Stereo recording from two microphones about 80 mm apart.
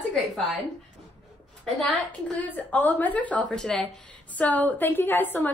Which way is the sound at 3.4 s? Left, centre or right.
Centre.